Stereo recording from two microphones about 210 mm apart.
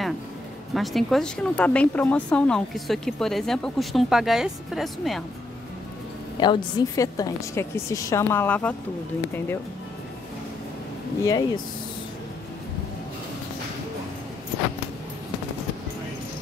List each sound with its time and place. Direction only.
0.7 s speech: centre (ahead or behind)
6.4 s a woman's voice: 20° left (ahead or behind)
11.2 s speech: 20° left (ahead or behind)